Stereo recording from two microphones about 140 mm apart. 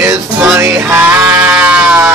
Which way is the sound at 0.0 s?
20° right (ahead or behind).